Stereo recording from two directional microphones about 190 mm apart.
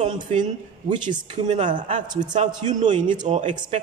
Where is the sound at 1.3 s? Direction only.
35° right (ahead or behind).